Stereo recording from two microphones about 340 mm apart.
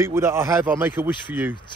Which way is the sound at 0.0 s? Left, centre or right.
Centre.